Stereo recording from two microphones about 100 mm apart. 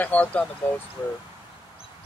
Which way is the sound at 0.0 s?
15° left (ahead or behind).